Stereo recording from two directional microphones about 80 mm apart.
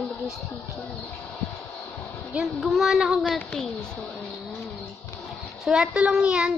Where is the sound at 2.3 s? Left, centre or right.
Centre.